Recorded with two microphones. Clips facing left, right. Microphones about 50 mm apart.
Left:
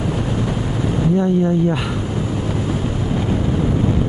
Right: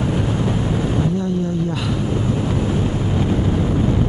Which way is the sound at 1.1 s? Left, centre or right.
Left.